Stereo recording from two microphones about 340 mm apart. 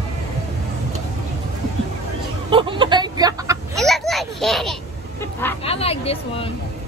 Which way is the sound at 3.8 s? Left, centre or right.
Centre.